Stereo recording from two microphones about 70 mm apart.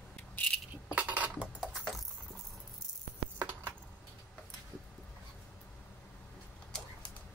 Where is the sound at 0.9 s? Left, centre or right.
Right.